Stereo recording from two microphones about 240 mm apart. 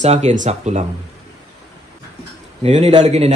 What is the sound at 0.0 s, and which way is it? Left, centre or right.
Speech, right.